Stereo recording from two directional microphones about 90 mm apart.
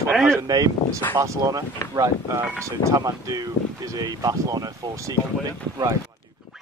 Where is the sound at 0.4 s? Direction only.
40° right (ahead or behind).